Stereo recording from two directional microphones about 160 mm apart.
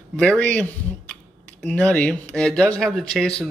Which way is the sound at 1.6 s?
5° left (ahead or behind).